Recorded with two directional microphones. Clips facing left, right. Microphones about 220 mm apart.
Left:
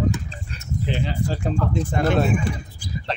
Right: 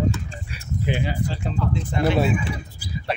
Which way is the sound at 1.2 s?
45° left (ahead or behind).